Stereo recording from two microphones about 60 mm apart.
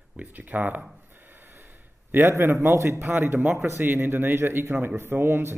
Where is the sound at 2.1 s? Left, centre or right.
Right.